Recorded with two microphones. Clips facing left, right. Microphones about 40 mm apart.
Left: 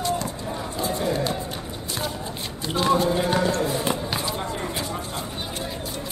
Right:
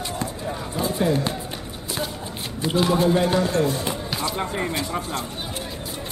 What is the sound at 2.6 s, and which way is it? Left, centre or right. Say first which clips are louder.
Speech: right 1 dB; centre.